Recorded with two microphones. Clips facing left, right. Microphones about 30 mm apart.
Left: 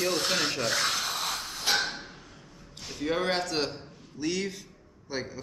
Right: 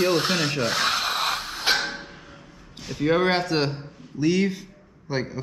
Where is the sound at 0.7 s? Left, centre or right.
Right.